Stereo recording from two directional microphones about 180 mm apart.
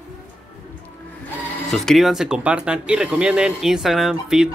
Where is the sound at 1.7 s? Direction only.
Centre (ahead or behind).